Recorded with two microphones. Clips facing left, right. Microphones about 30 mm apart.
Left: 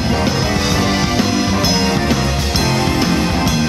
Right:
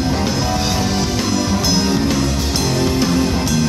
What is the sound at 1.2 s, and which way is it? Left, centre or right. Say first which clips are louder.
Music: left 2 dB; centre.